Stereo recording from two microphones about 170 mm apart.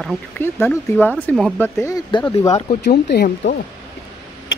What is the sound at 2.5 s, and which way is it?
Speech, 35° left (ahead or behind).